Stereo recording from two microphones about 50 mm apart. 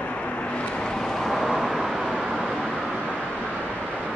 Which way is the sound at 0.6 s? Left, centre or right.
Centre.